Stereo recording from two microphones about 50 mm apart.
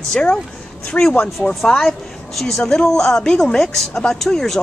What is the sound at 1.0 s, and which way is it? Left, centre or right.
Speech, left.